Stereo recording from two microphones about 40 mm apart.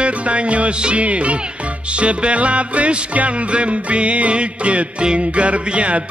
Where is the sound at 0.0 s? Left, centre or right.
Right.